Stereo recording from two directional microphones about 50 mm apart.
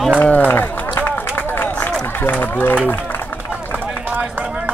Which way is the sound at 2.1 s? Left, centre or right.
Left.